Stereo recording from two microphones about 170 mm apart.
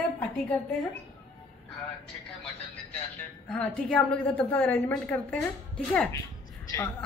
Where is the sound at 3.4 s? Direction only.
5° left (ahead or behind).